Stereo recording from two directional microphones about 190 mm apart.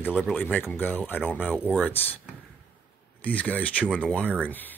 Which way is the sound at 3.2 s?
10° left (ahead or behind).